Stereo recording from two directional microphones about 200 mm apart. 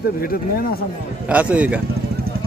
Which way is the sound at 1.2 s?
5° right (ahead or behind).